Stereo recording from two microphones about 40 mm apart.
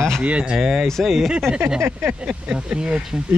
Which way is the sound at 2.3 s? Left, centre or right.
Right.